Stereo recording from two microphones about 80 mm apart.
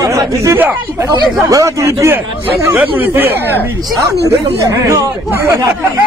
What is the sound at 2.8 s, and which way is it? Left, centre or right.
Speech, right.